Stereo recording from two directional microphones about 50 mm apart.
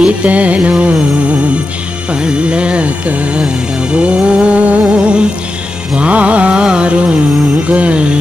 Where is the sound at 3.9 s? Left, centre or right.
Right.